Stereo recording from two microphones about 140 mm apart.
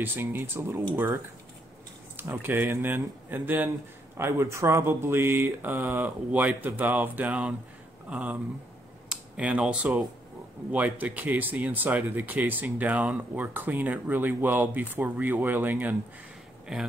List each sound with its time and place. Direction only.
0.0 s speech: 15° right (ahead or behind)
16.7 s speech: 5° right (ahead or behind)